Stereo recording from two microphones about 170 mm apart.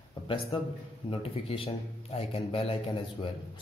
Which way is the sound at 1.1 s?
35° left (ahead or behind).